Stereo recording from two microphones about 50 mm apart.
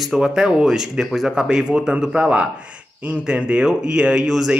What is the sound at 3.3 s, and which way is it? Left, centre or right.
Speech, centre.